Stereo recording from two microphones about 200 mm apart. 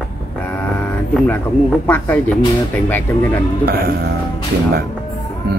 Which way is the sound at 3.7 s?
50° right (ahead or behind).